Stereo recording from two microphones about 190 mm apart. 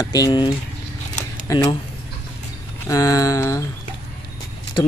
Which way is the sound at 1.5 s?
20° left (ahead or behind).